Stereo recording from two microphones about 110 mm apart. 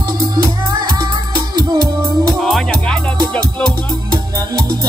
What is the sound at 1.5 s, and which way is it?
Music, 40° right (ahead or behind).